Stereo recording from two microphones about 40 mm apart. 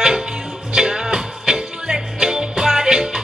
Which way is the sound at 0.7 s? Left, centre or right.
Centre.